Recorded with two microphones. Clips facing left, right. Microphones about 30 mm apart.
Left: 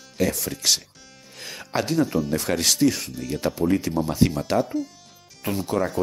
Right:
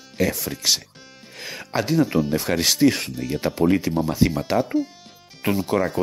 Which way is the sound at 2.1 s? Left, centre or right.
Right.